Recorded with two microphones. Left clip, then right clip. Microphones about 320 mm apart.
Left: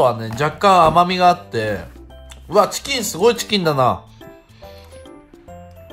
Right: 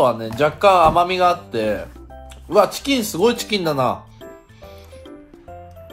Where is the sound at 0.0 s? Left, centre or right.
Left.